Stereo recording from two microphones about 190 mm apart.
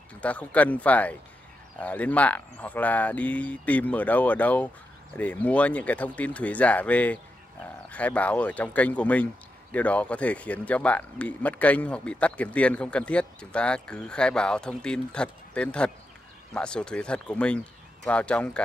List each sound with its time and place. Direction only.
0.2 s speech: 5° left (ahead or behind)